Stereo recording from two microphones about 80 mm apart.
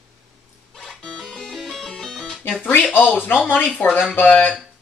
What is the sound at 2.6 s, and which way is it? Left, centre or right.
Speech, left.